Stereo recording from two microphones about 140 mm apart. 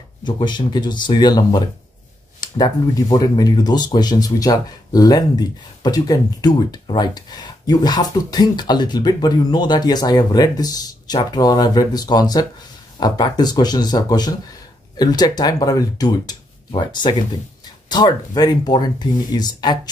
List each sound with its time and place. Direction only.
0.2 s speech: 35° left (ahead or behind)